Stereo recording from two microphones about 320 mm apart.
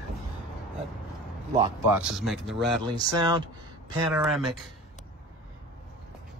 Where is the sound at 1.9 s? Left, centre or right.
Centre.